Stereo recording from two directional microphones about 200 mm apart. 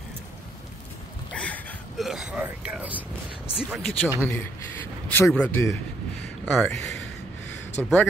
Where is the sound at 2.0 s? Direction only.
Centre (ahead or behind).